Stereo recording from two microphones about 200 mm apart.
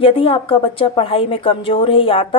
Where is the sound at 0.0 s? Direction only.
25° left (ahead or behind).